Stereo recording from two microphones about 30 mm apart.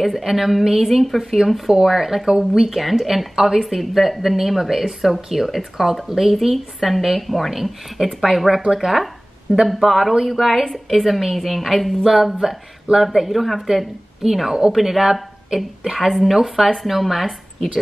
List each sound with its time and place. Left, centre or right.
0.0 s a woman's voice: centre
2.2 s a woman's voice: centre
3.6 s speech: centre
8.9 s a sound: centre
9.7 s a woman's voice: centre